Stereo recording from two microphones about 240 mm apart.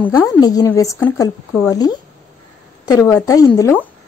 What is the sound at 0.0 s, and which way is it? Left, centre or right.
A woman's voice, centre.